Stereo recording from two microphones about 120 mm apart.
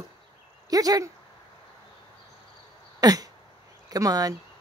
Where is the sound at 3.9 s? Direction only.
30° right (ahead or behind).